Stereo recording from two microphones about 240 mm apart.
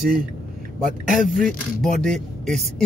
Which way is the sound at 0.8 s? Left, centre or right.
Centre.